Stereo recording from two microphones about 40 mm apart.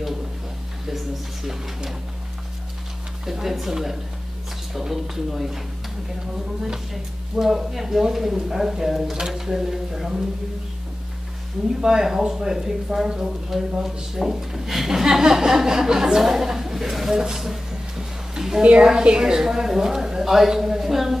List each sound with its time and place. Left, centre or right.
0.8 s a sound: centre
3.3 s speech: centre
11.8 s speech: centre
18.6 s a woman's voice: right; by 21.2 s centre